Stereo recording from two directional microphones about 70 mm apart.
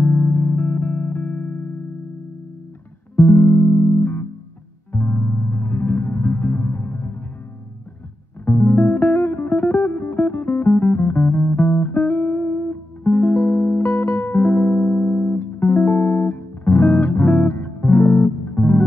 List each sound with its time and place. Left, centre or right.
0.0 s music: left
3.3 s music: left
8.5 s music: left